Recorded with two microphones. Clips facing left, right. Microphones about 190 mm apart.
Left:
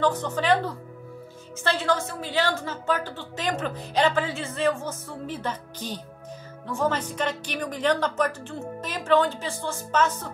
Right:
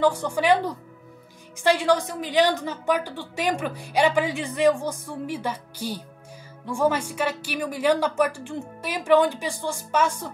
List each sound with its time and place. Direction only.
0.0 s a woman's voice: 10° right (ahead or behind)